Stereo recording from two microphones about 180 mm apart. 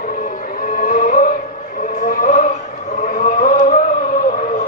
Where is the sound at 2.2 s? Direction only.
45° left (ahead or behind).